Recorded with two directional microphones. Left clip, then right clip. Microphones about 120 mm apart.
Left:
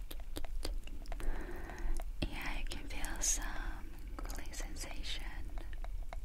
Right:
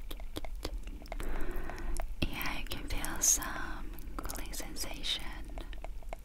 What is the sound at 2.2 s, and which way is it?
Whispering, 30° right (ahead or behind).